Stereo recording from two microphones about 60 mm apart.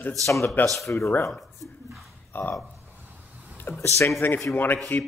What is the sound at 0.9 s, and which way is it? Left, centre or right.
Speech, left.